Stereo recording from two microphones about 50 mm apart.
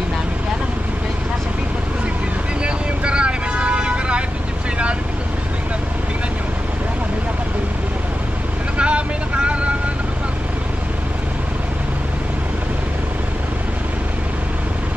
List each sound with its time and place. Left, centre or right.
2.6 s vehicle: right
8.7 s vehicle: right